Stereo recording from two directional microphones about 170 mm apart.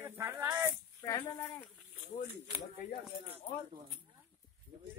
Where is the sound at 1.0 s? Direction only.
25° left (ahead or behind).